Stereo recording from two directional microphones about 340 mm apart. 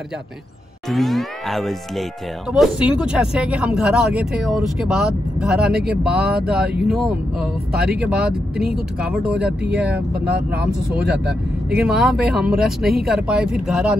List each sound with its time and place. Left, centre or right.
0.8 s speech: centre
5.8 s speech: right
6.4 s speech: centre
7.7 s speech: right
8.1 s speech: centre
9.9 s speech: right
11.7 s speech: centre